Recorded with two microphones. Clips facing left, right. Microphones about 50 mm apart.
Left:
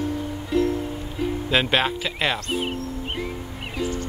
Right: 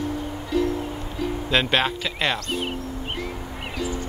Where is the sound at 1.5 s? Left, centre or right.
Centre.